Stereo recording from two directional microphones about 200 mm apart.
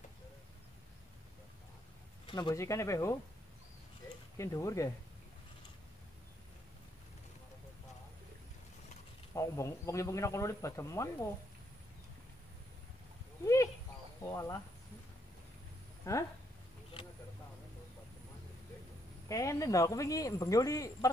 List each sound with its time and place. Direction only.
2.2 s speech: 20° left (ahead or behind)
4.4 s speech: 15° left (ahead or behind)
9.3 s speech: 15° left (ahead or behind)
14.2 s speech: 15° left (ahead or behind)
16.1 s speech: 15° left (ahead or behind)
19.2 s speech: 15° left (ahead or behind)